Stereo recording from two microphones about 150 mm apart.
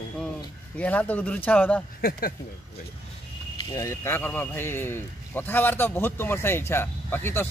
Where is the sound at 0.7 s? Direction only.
10° left (ahead or behind).